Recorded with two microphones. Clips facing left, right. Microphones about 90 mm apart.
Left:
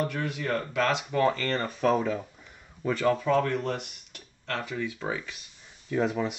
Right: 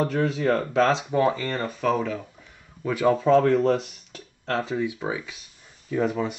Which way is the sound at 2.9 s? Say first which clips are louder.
Right 4 dB; 15° right (ahead or behind).